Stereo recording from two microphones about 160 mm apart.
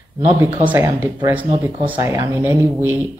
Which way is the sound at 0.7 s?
15° right (ahead or behind).